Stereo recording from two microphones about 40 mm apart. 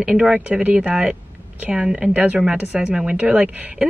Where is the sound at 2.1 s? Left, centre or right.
Right.